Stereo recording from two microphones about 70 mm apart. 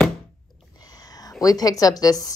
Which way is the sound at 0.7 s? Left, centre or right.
Left.